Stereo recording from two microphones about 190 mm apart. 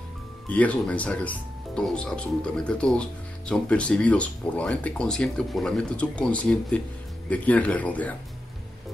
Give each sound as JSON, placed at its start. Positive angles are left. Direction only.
{"t": 0.5, "sound": "speech", "side_deg": 5}